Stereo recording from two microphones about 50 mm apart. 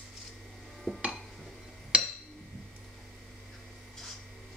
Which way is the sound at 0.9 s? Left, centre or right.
Centre.